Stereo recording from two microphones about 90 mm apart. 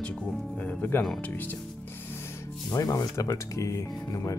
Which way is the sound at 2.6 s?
40° left (ahead or behind).